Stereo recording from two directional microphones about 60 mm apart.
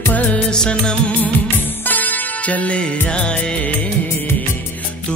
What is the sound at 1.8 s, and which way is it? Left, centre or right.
Music, left.